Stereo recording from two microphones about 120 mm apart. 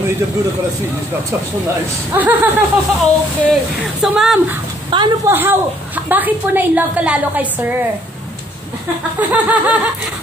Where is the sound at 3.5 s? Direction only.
5° right (ahead or behind).